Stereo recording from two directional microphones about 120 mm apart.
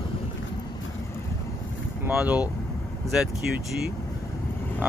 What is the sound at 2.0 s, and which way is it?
Speech, 15° right (ahead or behind).